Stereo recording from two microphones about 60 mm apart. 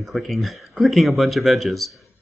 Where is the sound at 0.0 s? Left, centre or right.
Centre.